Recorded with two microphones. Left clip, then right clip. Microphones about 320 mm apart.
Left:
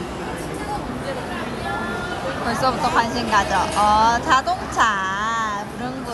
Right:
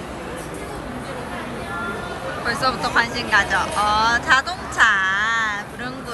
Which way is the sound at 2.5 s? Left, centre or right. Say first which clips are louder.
Left 1 dB; centre.